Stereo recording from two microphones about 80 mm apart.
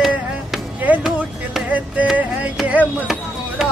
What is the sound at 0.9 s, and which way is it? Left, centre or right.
Music, centre.